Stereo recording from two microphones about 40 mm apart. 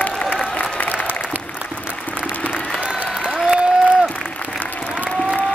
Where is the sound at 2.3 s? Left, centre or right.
Left.